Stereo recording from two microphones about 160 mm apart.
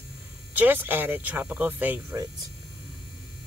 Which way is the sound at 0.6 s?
10° right (ahead or behind).